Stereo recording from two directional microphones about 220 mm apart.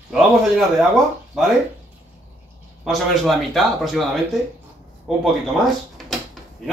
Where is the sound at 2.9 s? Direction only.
Centre (ahead or behind).